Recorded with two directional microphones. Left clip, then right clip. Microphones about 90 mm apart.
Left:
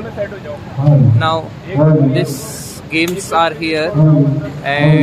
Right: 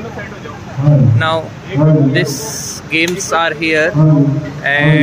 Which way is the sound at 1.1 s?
15° left (ahead or behind).